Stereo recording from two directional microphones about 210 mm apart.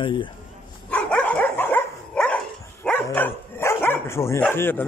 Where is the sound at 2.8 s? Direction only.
10° left (ahead or behind).